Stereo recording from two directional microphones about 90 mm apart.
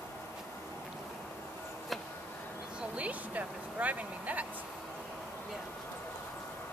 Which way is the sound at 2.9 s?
15° right (ahead or behind).